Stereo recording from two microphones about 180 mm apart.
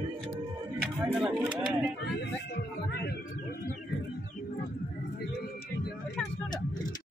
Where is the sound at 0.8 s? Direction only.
5° right (ahead or behind).